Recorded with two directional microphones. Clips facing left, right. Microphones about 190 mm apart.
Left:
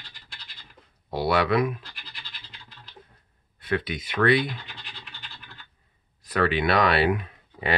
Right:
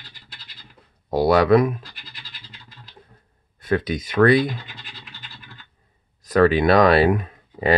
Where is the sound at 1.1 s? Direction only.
40° right (ahead or behind).